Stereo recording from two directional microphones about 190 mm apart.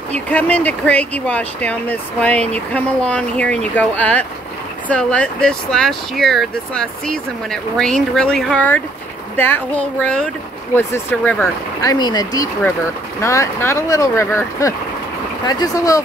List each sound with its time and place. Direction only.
0.3 s speech: 5° left (ahead or behind)
11.9 s speech: 20° left (ahead or behind)